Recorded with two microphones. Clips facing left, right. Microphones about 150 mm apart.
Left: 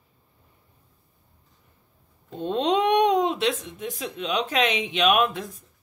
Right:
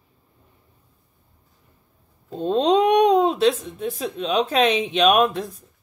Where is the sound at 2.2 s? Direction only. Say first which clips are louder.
Right 5 dB; 35° right (ahead or behind).